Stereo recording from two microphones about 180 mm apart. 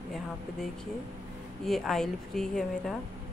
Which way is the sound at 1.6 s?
Centre (ahead or behind).